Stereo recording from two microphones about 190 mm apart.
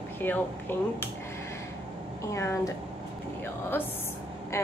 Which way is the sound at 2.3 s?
15° left (ahead or behind).